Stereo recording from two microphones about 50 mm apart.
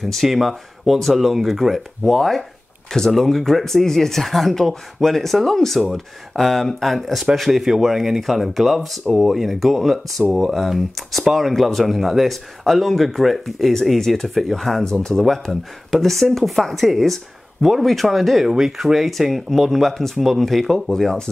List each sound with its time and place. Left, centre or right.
0.0 s speech: centre
20.9 s speech: centre